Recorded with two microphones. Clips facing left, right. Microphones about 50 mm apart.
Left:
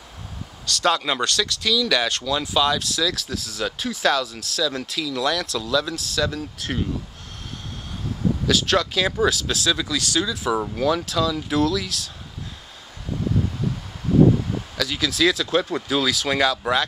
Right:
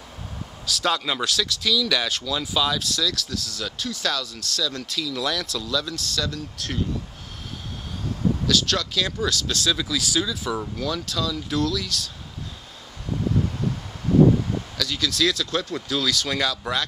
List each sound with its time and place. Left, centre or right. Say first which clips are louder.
0.7 s speech: left 3 dB; centre
8.5 s speech: left 7 dB; centre
10.6 s speech: left 6 dB; left
11.1 s speech: left 4 dB; centre
14.8 s speech: left 3 dB; centre